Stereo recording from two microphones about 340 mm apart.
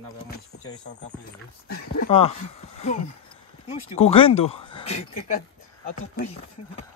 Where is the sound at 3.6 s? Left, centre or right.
Centre.